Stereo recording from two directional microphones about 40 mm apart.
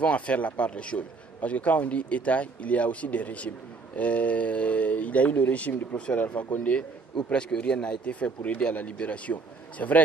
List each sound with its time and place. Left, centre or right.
0.0 s a man's voice: left
7.3 s speech: left
8.0 s a man's voice: left